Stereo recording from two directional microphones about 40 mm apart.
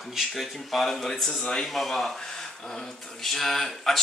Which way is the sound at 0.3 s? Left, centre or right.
Centre.